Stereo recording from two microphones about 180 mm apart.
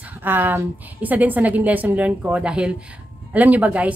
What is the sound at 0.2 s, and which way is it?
A woman's voice, 10° right (ahead or behind).